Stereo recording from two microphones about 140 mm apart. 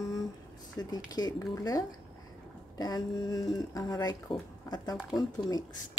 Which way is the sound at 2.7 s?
25° left (ahead or behind).